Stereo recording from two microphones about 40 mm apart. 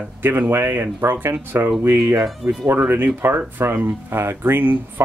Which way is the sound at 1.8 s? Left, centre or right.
Right.